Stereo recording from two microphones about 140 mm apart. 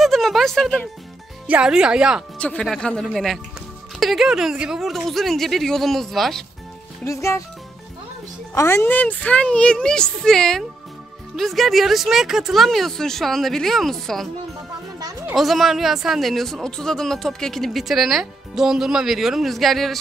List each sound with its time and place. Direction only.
0.0 s speech: centre (ahead or behind)
1.5 s speech: 5° right (ahead or behind)
2.3 s speech: 10° left (ahead or behind)
7.1 s speech: 20° left (ahead or behind)
8.5 s speech: 20° left (ahead or behind); by 14.2 s centre (ahead or behind)
15.3 s speech: centre (ahead or behind)